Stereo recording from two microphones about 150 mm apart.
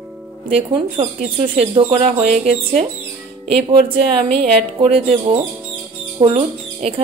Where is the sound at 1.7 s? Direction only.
45° right (ahead or behind).